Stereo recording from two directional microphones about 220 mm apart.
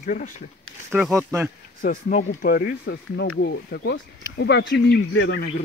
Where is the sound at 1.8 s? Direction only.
35° left (ahead or behind); by 5.4 s 55° left (ahead or behind).